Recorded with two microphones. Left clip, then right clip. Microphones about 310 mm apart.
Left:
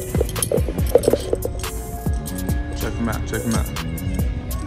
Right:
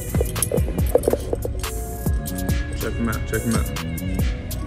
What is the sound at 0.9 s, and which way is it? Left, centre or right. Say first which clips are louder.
Music: left 3 dB; right.